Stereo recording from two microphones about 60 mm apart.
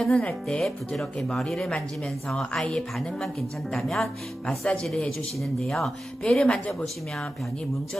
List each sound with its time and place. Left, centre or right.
0.0 s speech: left
0.5 s a woman's voice: centre
6.2 s speech: centre